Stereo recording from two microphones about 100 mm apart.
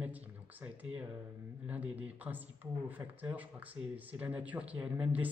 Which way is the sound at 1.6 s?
15° right (ahead or behind).